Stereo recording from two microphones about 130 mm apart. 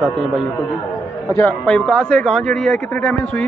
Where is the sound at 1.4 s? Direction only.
10° left (ahead or behind).